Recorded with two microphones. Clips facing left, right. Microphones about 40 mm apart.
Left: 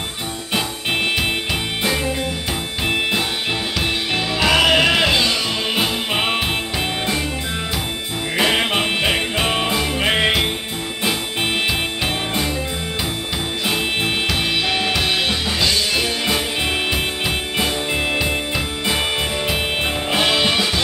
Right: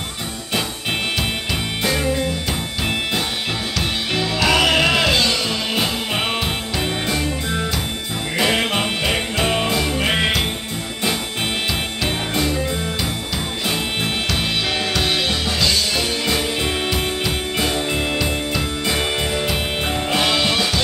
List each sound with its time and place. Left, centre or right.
4.1 s music: centre
8.4 s music: centre
14.8 s music: centre
18.9 s music: centre